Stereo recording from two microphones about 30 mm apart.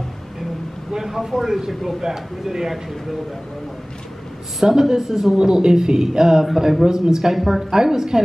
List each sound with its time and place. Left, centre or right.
0.9 s speech: centre
2.0 s speech: centre
4.6 s speech: centre
6.4 s speech: centre